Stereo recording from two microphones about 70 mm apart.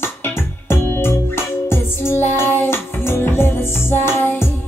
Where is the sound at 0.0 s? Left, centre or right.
Left.